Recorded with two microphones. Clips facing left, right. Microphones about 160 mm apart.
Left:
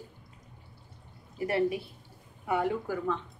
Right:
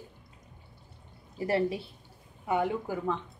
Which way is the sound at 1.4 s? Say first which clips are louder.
Even; 30° right (ahead or behind).